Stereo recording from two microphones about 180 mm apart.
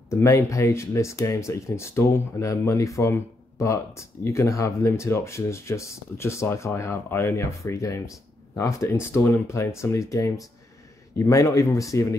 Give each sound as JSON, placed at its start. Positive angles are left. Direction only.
{"t": 0.1, "sound": "speech", "side_deg": 15}